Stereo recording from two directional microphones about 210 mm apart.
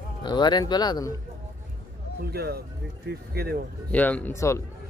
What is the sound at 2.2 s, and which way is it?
Speech, 50° right (ahead or behind).